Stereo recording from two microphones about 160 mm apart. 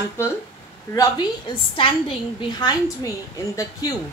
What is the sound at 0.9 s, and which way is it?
Speech, 20° left (ahead or behind).